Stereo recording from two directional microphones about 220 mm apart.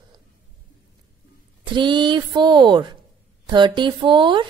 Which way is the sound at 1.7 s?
20° right (ahead or behind).